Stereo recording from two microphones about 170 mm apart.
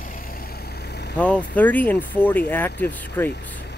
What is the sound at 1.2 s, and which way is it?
Speech, 10° left (ahead or behind).